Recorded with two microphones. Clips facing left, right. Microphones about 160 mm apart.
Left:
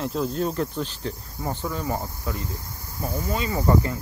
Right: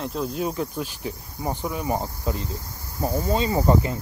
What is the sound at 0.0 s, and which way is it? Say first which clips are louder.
Cricket: left 1 dB; centre (ahead or behind).